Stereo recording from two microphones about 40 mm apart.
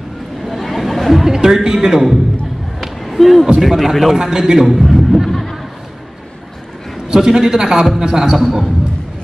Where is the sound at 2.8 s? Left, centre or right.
Centre.